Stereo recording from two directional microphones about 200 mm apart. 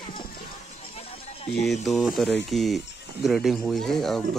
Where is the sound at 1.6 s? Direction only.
Centre (ahead or behind).